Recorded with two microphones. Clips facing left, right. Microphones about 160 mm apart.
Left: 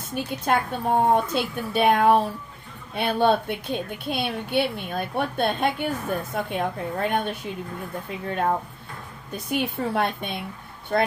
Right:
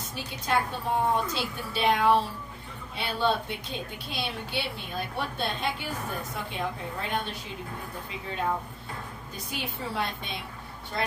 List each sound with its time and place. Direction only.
0.1 s a woman's voice: 55° left (ahead or behind)
9.5 s a woman's voice: 55° left (ahead or behind)